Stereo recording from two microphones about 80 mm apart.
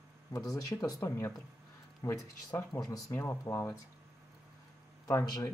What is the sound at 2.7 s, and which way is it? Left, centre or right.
Speech, left.